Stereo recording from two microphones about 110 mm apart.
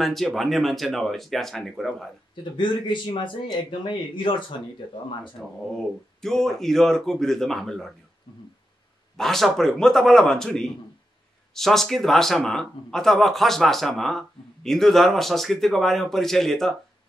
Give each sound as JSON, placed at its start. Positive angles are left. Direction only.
{"t": 0.0, "sound": "speech", "side_deg": 0}
{"t": 2.5, "sound": "speech", "side_deg": 45}
{"t": 5.4, "sound": "speech", "side_deg": 5}
{"t": 9.1, "sound": "speech", "side_deg": 5}